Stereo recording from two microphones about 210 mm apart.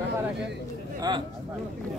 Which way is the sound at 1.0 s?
20° right (ahead or behind).